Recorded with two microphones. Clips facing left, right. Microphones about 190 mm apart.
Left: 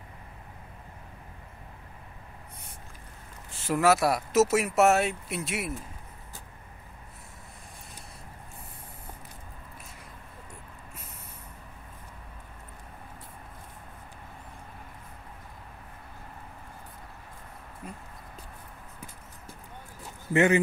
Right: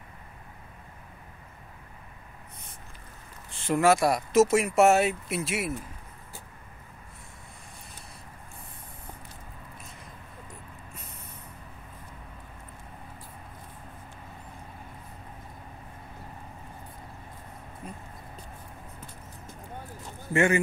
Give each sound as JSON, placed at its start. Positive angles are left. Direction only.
{"t": 3.5, "sound": "speech", "side_deg": 5}
{"t": 17.8, "sound": "a sound", "side_deg": 5}
{"t": 20.3, "sound": "a man's voice", "side_deg": 20}